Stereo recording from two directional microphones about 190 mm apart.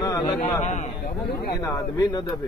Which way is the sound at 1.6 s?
20° left (ahead or behind).